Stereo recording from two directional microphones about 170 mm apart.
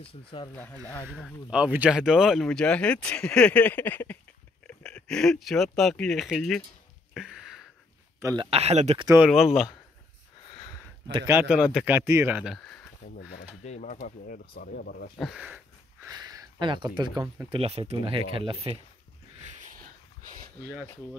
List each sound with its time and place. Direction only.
0.0 s speech: 30° left (ahead or behind)
0.5 s speech: 10° left (ahead or behind)
1.1 s speech: 5° right (ahead or behind)
7.2 s a sound: 5° right (ahead or behind)
8.4 s speech: 35° right (ahead or behind)
9.2 s speech: centre (ahead or behind)
11.4 s speech: 5° right (ahead or behind)
12.5 s a sound: 5° left (ahead or behind)
13.7 s speech: 45° left (ahead or behind); by 15.0 s 70° left (ahead or behind)
15.1 s speech: 5° right (ahead or behind)
16.1 s speech: 20° right (ahead or behind)
17.6 s speech: 35° right (ahead or behind)
19.6 s a sound: 50° right (ahead or behind)